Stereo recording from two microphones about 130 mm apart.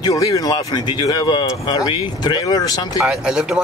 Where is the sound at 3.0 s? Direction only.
5° right (ahead or behind).